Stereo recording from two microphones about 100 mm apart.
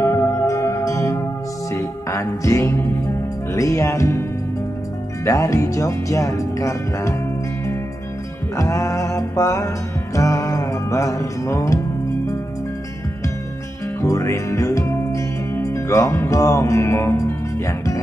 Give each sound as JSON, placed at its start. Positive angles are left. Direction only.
{"t": 0.0, "sound": "music", "side_deg": 30}
{"t": 3.5, "sound": "speech", "side_deg": 35}
{"t": 5.2, "sound": "speech", "side_deg": 30}
{"t": 8.5, "sound": "speech", "side_deg": 30}
{"t": 10.1, "sound": "music", "side_deg": 35}
{"t": 14.0, "sound": "music", "side_deg": 30}